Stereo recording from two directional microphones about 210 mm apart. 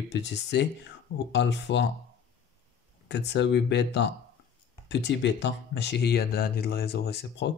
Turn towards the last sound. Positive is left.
turn(degrees=50)  # may be behind; listen again after turning